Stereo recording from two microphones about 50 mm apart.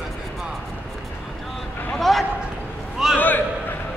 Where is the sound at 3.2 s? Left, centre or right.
Left.